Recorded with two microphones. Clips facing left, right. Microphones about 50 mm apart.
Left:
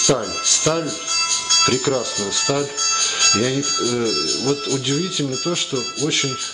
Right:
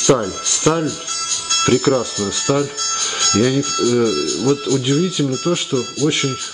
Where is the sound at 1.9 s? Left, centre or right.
Centre.